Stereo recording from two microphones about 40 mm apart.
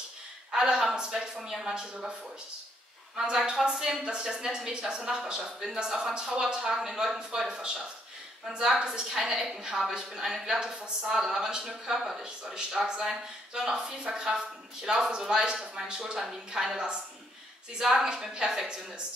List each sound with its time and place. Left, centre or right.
0.5 s a woman's voice: centre
3.4 s a woman's voice: centre